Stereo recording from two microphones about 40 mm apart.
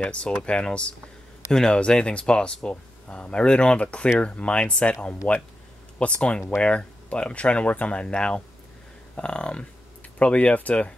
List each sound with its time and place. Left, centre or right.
0.0 s speech: left
1.5 s speech: centre
1.8 s speech: left